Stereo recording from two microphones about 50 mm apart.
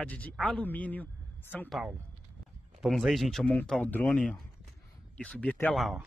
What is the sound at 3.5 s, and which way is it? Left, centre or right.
Speech, centre.